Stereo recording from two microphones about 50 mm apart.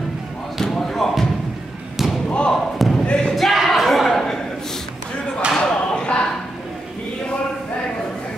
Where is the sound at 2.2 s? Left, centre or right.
Centre.